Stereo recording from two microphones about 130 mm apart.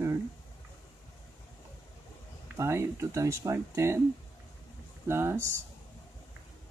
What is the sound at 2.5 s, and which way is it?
Speech, 20° right (ahead or behind).